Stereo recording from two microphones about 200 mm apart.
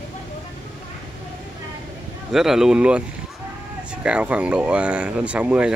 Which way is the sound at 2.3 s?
Centre (ahead or behind).